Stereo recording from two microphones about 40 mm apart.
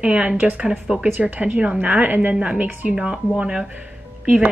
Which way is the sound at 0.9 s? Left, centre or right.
Right.